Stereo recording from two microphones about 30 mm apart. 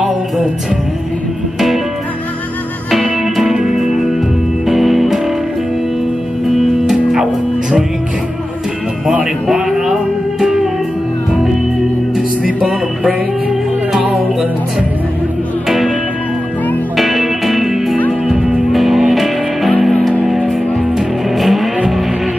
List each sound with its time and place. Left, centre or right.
2.9 s music: centre
6.5 s music: centre
9.5 s music: centre
16.9 s music: centre
21.4 s vehicle: centre